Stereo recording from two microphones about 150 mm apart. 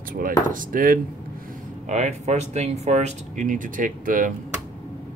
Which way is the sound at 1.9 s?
50° right (ahead or behind).